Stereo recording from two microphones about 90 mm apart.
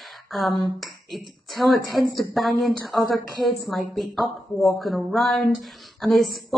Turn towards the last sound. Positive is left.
turn(degrees=0)  # may be behind; listen again after turning